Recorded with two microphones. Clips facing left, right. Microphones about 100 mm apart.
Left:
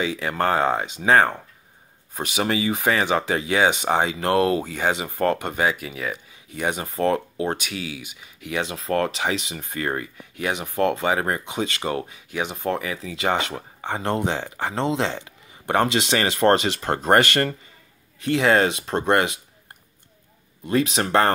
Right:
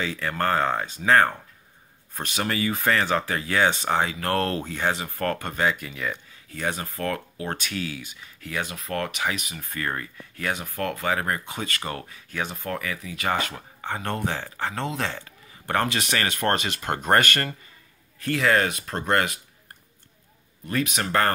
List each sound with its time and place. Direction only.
0.0 s speech: 15° left (ahead or behind)
5.7 s speech: 5° left (ahead or behind)
6.5 s speech: 15° left (ahead or behind)
20.6 s speech: 25° left (ahead or behind)